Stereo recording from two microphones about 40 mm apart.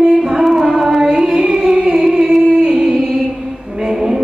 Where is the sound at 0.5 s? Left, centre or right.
Centre.